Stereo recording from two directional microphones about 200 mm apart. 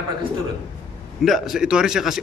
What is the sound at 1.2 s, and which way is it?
Speech, centre (ahead or behind).